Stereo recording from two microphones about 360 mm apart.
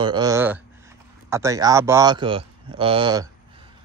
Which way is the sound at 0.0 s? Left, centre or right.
Centre.